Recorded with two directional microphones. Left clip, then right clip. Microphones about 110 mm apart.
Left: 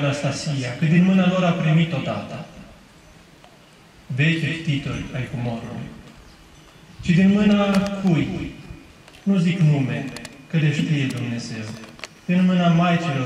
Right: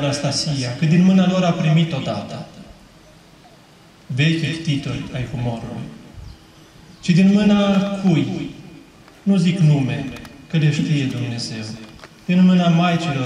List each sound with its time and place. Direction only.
0.0 s a man's voice: 15° right (ahead or behind)
4.2 s a man's voice: 20° right (ahead or behind)
7.1 s a man's voice: 15° right (ahead or behind)